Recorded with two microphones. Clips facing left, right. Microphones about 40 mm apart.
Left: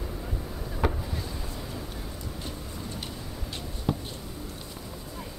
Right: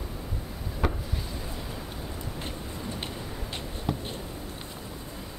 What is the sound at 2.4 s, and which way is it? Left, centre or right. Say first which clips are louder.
Vehicle: right 2 dB; right.